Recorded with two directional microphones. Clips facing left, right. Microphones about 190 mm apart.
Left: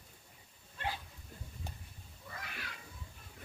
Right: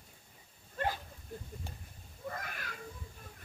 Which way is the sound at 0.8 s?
45° right (ahead or behind).